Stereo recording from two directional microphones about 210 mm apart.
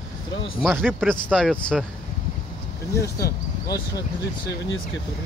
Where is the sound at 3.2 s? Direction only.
20° left (ahead or behind).